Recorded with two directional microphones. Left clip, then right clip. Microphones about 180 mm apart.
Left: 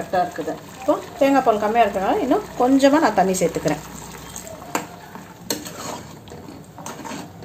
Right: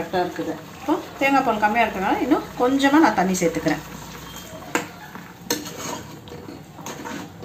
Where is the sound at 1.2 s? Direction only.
50° left (ahead or behind).